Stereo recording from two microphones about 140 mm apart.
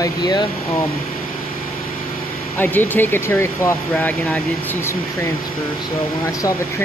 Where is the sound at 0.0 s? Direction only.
30° left (ahead or behind).